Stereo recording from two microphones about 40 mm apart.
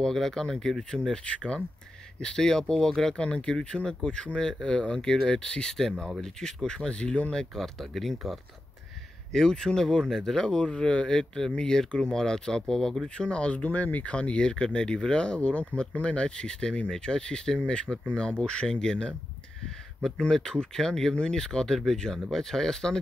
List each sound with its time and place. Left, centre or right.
0.0 s speech: centre
1.2 s speech: left
3.2 s speech: left
6.9 s speech: left
7.5 s speech: centre
9.3 s speech: centre
11.1 s speech: centre
13.2 s speech: left
14.1 s speech: left
16.3 s speech: centre
20.2 s speech: centre